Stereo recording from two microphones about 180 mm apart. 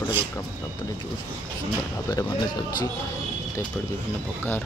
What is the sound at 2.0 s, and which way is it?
Speech, 20° left (ahead or behind).